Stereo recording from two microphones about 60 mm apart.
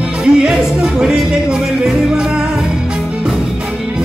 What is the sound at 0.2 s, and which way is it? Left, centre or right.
Speech, centre.